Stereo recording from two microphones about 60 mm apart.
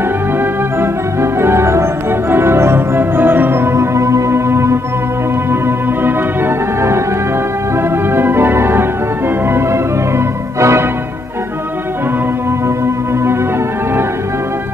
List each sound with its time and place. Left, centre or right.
0.4 s organ: right
7.9 s organ: right
9.5 s music: right
12.6 s music: right